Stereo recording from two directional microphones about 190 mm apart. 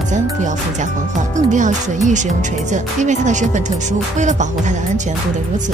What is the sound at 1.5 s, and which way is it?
Speech, 40° right (ahead or behind).